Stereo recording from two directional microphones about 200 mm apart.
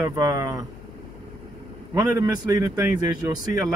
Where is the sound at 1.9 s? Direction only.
15° right (ahead or behind).